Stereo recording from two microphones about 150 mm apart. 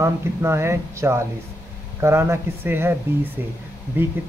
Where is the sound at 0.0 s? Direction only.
20° right (ahead or behind).